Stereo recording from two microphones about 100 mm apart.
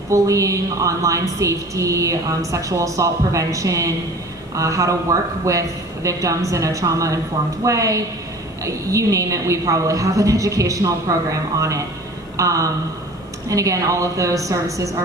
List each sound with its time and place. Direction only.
0.1 s a woman's voice: 30° right (ahead or behind)